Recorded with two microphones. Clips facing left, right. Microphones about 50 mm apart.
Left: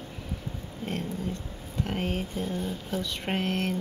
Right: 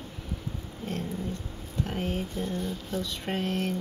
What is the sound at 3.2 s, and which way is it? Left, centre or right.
Speech, left.